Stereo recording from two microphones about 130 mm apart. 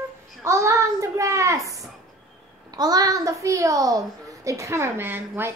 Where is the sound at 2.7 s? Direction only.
30° right (ahead or behind).